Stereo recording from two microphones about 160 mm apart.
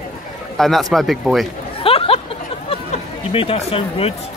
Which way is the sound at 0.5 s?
Centre (ahead or behind).